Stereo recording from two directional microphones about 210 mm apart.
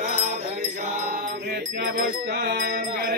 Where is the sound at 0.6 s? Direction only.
45° right (ahead or behind).